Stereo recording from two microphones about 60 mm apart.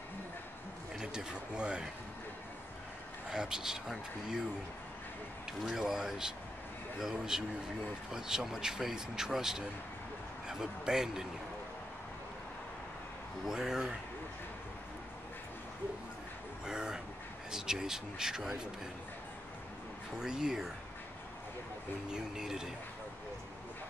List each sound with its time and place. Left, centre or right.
0.9 s speech: centre
3.3 s speech: centre
5.6 s speech: centre
13.5 s speech: centre
16.6 s vehicle: centre
17.5 s speech: centre
20.2 s speech: centre
22.1 s speech: centre